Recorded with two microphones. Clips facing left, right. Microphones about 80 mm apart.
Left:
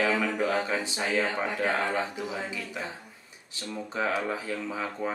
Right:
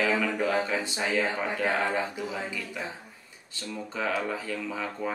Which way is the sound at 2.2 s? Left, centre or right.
Centre.